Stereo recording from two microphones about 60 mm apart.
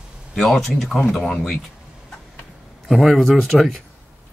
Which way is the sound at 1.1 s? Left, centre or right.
Centre.